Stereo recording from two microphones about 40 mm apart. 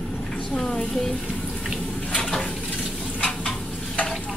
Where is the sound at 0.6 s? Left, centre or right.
Centre.